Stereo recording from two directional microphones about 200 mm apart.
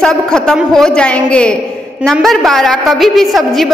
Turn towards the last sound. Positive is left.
turn(degrees=0)  # may be behind; listen again after turning